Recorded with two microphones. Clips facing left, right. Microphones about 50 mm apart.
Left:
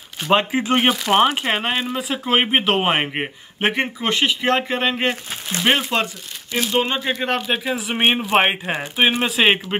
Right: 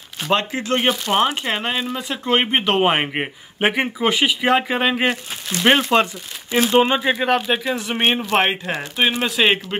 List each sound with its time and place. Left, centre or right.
0.3 s speech: centre
6.5 s speech: right
7.2 s speech: centre